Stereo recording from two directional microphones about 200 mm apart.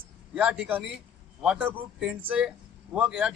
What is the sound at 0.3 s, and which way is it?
A man's voice, 5° right (ahead or behind).